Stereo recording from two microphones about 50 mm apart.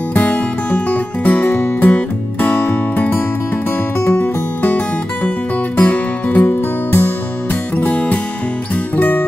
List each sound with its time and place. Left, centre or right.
0.1 s music: left
7.7 s music: left
8.9 s music: left